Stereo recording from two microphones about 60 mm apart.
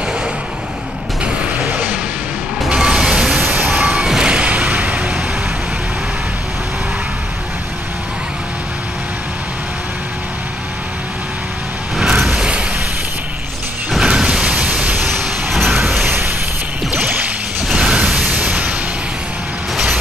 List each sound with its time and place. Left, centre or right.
2.7 s vehicle: centre
3.8 s music: centre; by 5.1 s right
12.3 s a sound: centre
13.9 s a sound: centre
15.0 s vehicle: centre
16.9 s music: right
17.6 s mechanisms: centre
18.3 s music: right